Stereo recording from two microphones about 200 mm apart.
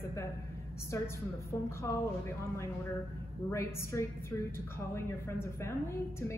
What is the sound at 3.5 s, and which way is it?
A man's voice, 15° left (ahead or behind).